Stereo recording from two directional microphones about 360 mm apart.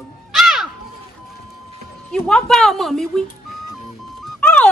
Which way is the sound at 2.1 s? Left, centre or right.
Centre.